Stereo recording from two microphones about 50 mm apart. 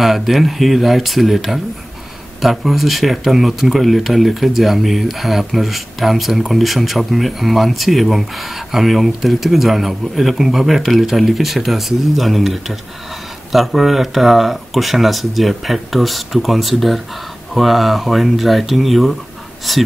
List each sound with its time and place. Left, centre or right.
0.0 s speech: centre